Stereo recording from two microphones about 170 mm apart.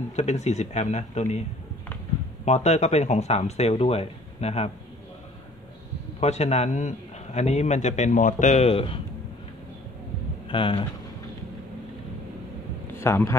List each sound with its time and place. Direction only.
0.1 s speech: 40° left (ahead or behind)
2.4 s speech: 40° left (ahead or behind)
6.1 s speech: 40° left (ahead or behind)
10.5 s speech: 30° left (ahead or behind)
13.0 s speech: 15° left (ahead or behind)